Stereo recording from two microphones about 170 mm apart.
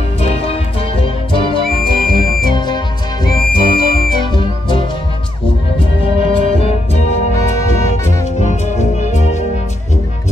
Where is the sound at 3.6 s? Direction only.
60° left (ahead or behind).